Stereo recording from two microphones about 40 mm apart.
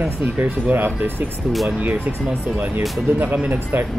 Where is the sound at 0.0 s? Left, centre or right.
Right.